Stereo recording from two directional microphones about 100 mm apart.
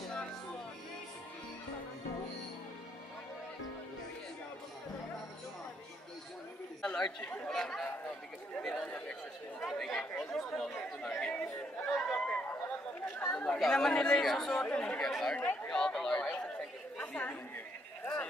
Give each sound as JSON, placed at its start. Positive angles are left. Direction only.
{"t": 6.8, "sound": "chatter", "side_deg": 5}
{"t": 7.2, "sound": "speech", "side_deg": 5}
{"t": 8.5, "sound": "chatter", "side_deg": 5}
{"t": 13.4, "sound": "speech", "side_deg": 5}
{"t": 15.0, "sound": "chatter", "side_deg": 0}
{"t": 15.3, "sound": "a sound", "side_deg": 10}
{"t": 17.0, "sound": "chatter", "side_deg": 15}